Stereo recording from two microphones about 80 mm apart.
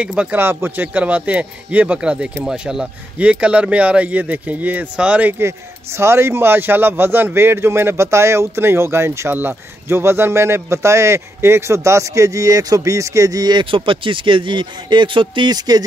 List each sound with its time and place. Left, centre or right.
0.0 s speech: centre
0.4 s speech: right
5.4 s a man's voice: right
15.5 s speech: right